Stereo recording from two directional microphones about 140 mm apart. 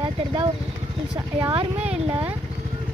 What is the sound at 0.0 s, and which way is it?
Speech, 35° right (ahead or behind).